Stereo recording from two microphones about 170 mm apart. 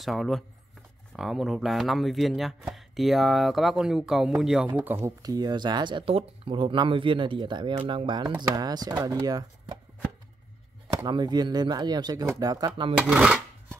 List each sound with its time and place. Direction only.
0.0 s speech: centre (ahead or behind); by 9.8 s 20° right (ahead or behind)
11.1 s speech: 25° right (ahead or behind)
12.9 s chopping: 5° right (ahead or behind)